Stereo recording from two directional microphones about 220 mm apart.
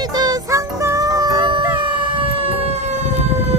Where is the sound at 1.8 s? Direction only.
25° right (ahead or behind).